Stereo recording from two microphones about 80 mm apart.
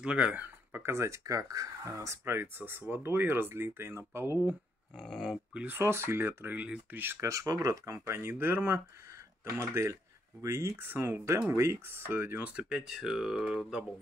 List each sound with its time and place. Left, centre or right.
0.0 s speech: centre; by 4.4 s right
4.9 s a sound: centre
5.5 s speech: centre
5.8 s speech: right
7.2 s speech: right
12.4 s speech: centre